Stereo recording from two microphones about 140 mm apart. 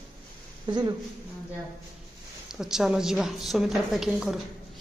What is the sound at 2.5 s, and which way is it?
Speech, 5° right (ahead or behind).